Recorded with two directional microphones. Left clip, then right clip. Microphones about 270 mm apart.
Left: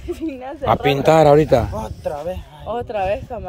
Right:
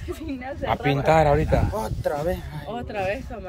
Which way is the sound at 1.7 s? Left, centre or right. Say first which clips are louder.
Left 1 dB; right.